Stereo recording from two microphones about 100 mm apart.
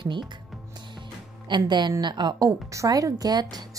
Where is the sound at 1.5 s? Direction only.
50° right (ahead or behind).